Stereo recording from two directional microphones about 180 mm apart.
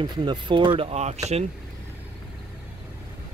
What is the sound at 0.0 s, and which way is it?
Speech, 25° right (ahead or behind).